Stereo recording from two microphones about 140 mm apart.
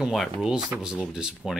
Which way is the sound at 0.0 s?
Centre (ahead or behind).